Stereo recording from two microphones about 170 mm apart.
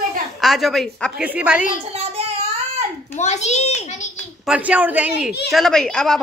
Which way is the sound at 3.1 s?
40° left (ahead or behind).